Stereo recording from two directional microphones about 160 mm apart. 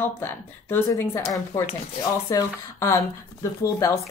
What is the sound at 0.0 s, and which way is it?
Speech, 15° left (ahead or behind).